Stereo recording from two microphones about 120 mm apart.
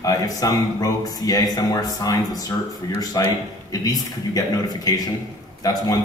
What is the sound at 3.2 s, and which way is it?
Speech, 30° left (ahead or behind).